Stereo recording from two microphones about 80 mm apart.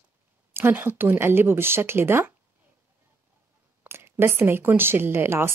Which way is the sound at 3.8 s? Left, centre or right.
Right.